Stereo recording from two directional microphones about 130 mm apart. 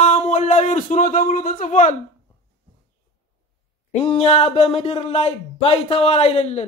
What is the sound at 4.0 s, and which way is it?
A man's voice, 60° left (ahead or behind).